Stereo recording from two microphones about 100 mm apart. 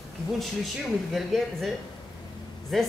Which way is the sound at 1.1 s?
Centre (ahead or behind).